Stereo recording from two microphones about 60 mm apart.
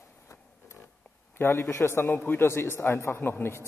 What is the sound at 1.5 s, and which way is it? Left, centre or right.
Speech, left.